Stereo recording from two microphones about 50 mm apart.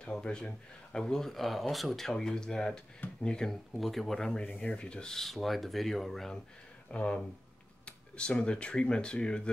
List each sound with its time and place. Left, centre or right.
0.0 s speech: centre
3.7 s speech: centre
4.6 s rub: left
5.1 s speech: centre
6.9 s speech: left